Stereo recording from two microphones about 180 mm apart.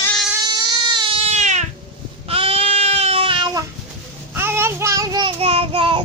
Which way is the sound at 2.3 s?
30° right (ahead or behind).